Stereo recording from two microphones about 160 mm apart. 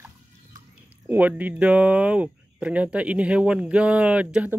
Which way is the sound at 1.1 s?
10° right (ahead or behind).